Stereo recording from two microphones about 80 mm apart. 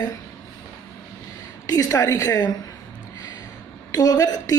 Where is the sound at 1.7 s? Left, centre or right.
Left.